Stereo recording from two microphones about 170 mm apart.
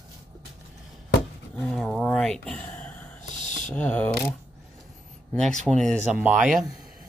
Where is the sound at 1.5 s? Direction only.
5° left (ahead or behind).